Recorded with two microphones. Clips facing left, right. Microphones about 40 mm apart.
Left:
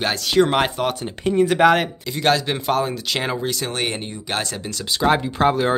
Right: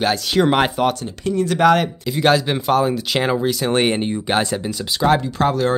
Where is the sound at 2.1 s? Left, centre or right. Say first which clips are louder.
Right 3 dB; centre.